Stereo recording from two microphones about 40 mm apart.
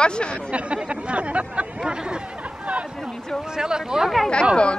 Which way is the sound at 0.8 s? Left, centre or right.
Right.